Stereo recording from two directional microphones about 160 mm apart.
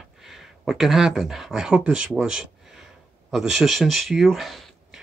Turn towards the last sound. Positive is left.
turn(degrees=0)  # may be behind; listen again after turning